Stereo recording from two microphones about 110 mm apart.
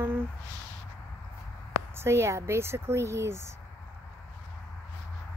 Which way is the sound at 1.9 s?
25° right (ahead or behind).